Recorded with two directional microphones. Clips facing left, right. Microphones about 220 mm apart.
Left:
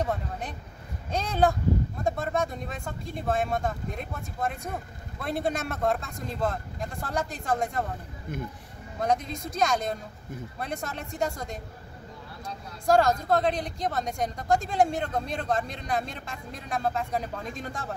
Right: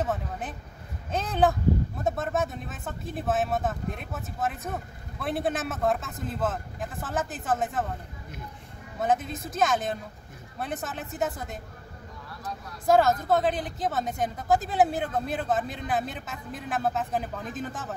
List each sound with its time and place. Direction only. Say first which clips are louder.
0.0 s speech: even; 5° right (ahead or behind)
9.0 s speech: right 1 dB; 5° right (ahead or behind)
12.8 s speech: right 1 dB; 5° right (ahead or behind)